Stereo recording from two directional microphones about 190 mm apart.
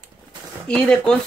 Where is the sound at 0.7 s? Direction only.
5° left (ahead or behind).